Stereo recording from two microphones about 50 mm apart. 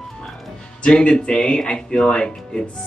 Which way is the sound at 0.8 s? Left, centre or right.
Centre.